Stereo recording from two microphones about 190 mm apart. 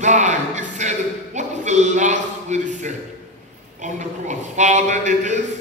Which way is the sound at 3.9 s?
40° right (ahead or behind).